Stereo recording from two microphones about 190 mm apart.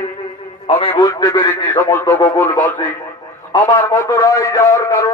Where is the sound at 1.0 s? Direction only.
20° left (ahead or behind).